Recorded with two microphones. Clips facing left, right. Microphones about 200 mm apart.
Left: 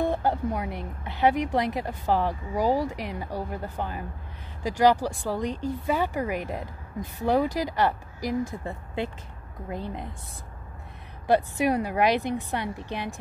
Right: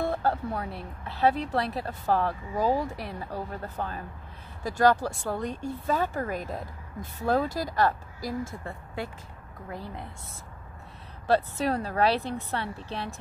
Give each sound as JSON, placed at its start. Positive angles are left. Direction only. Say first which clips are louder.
{"t": 0.0, "sound": "a woman's voice", "louder": "left 2 dB", "side_deg": 15}
{"t": 11.2, "sound": "speech", "louder": "left 2 dB", "side_deg": 15}